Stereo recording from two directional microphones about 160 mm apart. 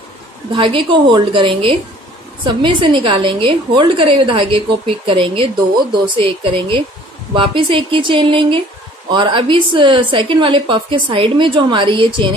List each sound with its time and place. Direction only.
0.6 s a woman's voice: 30° right (ahead or behind)